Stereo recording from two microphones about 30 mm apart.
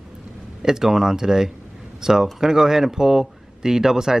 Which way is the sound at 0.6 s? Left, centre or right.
Centre.